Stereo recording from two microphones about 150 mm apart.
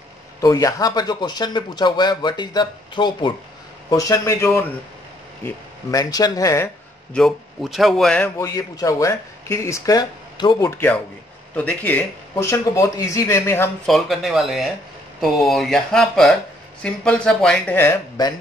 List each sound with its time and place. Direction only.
0.4 s speech: 25° left (ahead or behind)
7.2 s speech: centre (ahead or behind)
8.4 s speech: 20° left (ahead or behind)
10.7 s speech: 10° left (ahead or behind)
13.8 s speech: centre (ahead or behind)